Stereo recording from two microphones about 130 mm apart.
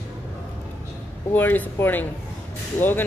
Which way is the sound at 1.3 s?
15° left (ahead or behind).